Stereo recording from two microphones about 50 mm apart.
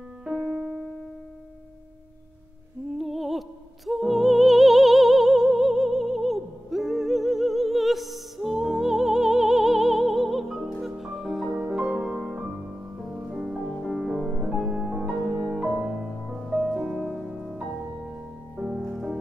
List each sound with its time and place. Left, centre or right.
0.2 s music: centre
3.0 s music: centre
11.5 s music: right
18.8 s music: centre